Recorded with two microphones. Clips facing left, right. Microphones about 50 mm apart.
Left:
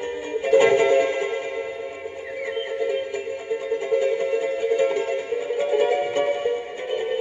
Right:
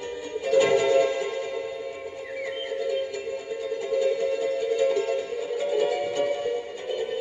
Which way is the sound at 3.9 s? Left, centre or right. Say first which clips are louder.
Left 2 dB; left.